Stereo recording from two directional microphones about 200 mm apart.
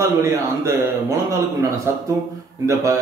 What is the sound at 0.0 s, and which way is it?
Speech, 15° right (ahead or behind).